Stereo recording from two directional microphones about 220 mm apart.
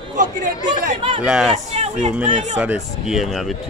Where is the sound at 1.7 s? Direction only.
30° right (ahead or behind).